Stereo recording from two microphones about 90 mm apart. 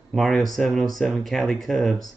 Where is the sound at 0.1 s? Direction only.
Centre (ahead or behind).